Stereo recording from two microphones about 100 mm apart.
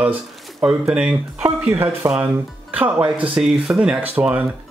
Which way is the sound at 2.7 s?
15° right (ahead or behind).